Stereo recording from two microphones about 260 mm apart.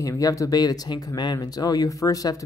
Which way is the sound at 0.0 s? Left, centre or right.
Centre.